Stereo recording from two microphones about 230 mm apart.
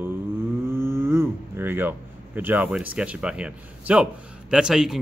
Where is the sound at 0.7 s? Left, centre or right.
Centre.